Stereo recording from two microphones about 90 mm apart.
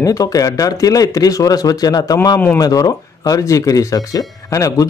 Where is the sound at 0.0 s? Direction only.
40° left (ahead or behind).